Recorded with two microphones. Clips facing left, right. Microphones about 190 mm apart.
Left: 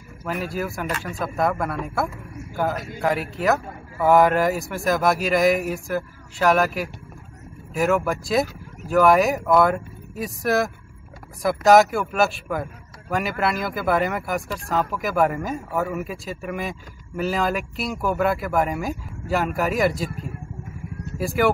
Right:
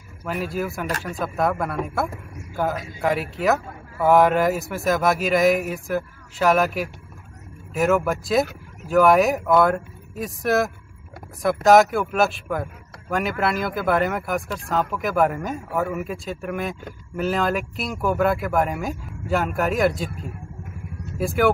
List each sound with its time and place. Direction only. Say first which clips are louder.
0.2 s a man's voice: right 1 dB; centre (ahead or behind)
21.2 s a man's voice: right 1 dB; centre (ahead or behind)